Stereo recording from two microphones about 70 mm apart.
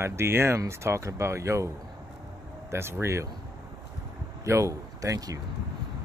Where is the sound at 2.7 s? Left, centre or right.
Right.